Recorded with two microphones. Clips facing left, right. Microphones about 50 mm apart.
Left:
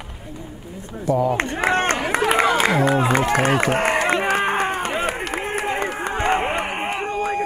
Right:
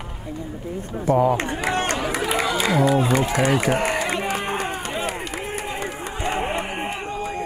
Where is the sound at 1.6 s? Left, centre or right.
Left.